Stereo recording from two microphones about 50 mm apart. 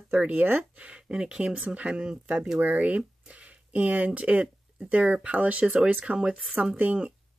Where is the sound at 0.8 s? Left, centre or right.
Centre.